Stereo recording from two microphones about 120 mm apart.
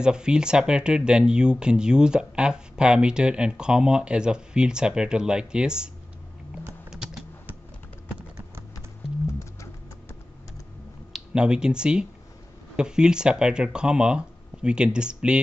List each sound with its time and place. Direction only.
0.0 s speech: 5° right (ahead or behind)
6.9 s typing: 5° right (ahead or behind)
9.4 s music: 25° left (ahead or behind)
11.1 s speech: 5° right (ahead or behind)